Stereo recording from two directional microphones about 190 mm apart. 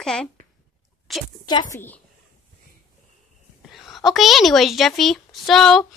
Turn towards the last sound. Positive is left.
turn(degrees=0)  # may be behind; listen again after turning